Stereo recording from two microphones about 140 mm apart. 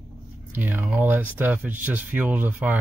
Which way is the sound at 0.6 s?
10° right (ahead or behind).